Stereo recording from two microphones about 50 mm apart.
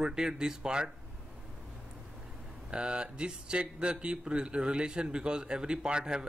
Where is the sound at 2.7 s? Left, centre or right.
Centre.